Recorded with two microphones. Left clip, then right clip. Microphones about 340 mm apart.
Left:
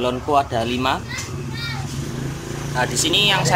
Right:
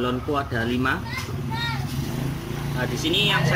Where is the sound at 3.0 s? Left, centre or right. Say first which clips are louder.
Left 4 dB; centre.